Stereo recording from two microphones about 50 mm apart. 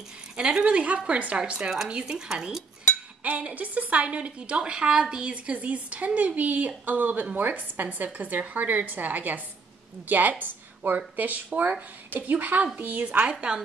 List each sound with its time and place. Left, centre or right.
0.4 s speech: centre
0.7 s a woman's voice: right
3.3 s a woman's voice: right
5.2 s a woman's voice: right
10.4 s a sound: right
11.1 s a woman's voice: right
13.3 s a woman's voice: right